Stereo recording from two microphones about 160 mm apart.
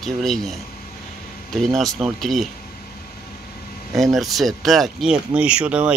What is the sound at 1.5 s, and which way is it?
Speech, 5° left (ahead or behind).